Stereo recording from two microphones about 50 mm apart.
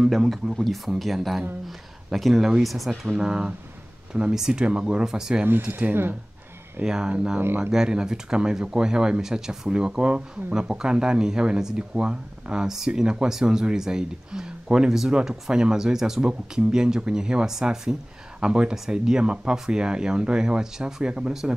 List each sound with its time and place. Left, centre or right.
0.1 s speech: centre
3.1 s speech: centre
5.4 s speech: right
6.8 s speech: centre